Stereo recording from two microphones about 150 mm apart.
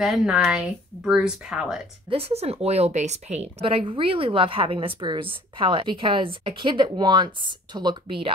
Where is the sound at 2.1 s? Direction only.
40° right (ahead or behind).